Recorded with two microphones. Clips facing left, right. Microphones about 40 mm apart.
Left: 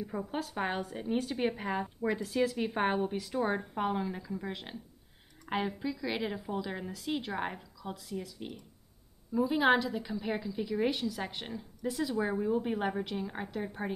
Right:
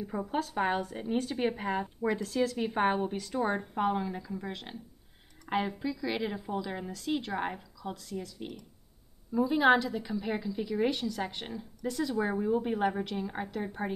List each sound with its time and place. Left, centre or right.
0.3 s a woman's voice: centre
2.2 s a woman's voice: centre